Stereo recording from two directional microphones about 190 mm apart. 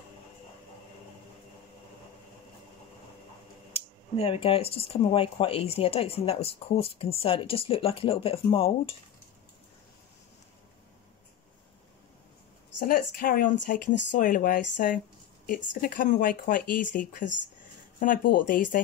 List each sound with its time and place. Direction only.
3.7 s speech: 30° left (ahead or behind)
12.7 s speech: 50° left (ahead or behind)